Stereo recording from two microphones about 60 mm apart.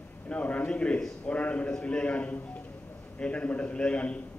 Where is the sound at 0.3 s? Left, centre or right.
Left.